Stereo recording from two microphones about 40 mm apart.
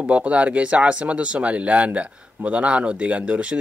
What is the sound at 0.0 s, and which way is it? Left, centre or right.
Speech, right.